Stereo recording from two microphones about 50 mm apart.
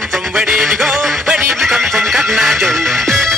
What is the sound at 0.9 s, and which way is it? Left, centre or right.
Music, centre.